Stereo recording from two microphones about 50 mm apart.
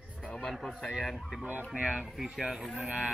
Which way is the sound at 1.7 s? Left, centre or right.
Right.